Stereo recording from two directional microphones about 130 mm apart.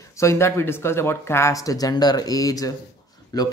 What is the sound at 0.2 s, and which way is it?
Speech, 20° left (ahead or behind).